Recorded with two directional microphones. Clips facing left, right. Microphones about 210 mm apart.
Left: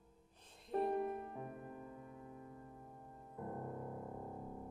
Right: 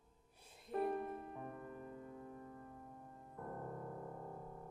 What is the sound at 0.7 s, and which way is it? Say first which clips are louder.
Music: left 2 dB; 30° left (ahead or behind).